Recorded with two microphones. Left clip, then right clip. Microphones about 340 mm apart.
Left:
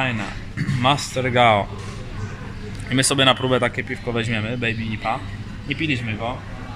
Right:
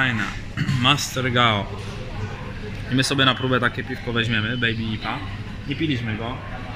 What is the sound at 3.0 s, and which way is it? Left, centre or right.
Speech, left.